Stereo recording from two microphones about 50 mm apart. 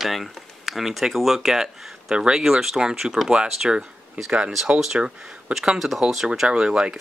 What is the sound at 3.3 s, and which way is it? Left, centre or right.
Speech, centre.